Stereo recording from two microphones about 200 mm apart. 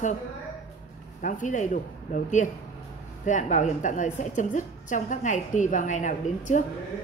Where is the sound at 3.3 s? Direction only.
40° left (ahead or behind).